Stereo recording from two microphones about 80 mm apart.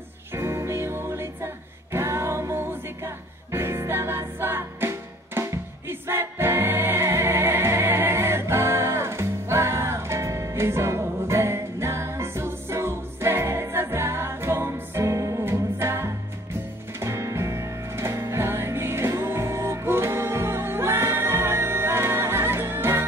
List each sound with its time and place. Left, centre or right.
0.4 s music: right